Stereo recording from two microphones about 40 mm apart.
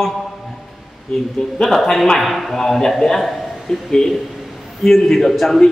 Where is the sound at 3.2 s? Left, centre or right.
Centre.